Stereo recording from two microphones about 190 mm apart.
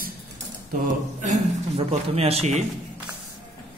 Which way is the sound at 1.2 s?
35° right (ahead or behind).